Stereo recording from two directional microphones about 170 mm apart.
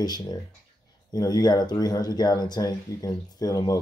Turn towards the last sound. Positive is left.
turn(degrees=20)  # may be behind; listen again after turning